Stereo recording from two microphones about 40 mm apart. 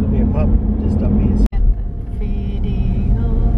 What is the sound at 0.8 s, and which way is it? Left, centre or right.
Vehicle, centre.